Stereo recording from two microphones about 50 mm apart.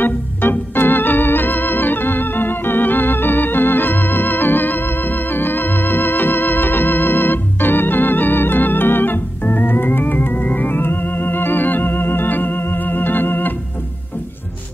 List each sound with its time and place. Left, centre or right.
0.0 s organ: left